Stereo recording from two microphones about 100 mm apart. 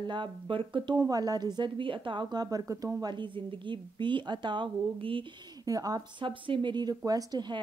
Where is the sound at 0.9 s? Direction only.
40° right (ahead or behind).